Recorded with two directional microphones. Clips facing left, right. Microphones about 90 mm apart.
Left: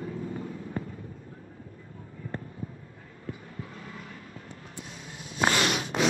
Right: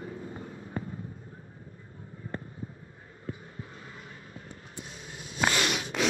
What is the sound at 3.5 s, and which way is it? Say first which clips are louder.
Vehicle: left 3 dB; 25° right (ahead or behind).